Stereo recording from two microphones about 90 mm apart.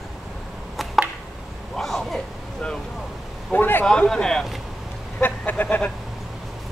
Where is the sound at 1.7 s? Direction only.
Centre (ahead or behind).